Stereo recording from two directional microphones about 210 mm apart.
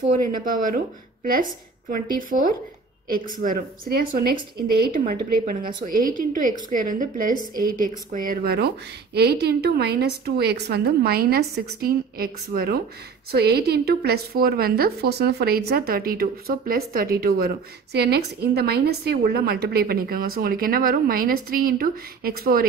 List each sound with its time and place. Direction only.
1.2 s a woman's voice: 40° right (ahead or behind)